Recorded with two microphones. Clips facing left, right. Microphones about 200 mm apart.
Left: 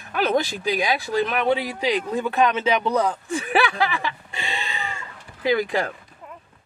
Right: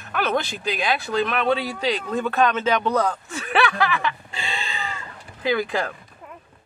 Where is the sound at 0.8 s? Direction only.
20° left (ahead or behind).